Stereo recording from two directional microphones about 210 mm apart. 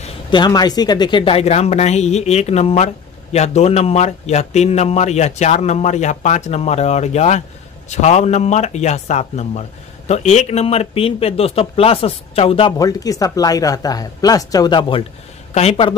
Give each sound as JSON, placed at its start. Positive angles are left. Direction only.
{"t": 0.0, "sound": "a man's voice", "side_deg": 20}